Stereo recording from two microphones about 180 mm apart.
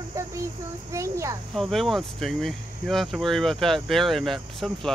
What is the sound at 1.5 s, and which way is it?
Speech, centre (ahead or behind).